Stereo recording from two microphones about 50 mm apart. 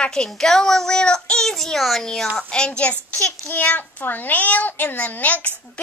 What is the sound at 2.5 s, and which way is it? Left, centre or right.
Speech, centre.